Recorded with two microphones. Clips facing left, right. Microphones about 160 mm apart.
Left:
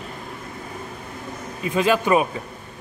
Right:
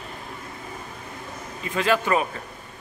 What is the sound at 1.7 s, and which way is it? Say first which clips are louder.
Speech: left 4 dB; 15° left (ahead or behind).